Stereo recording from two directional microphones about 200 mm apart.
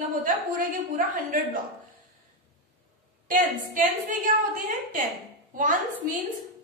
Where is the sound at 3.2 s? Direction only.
40° right (ahead or behind).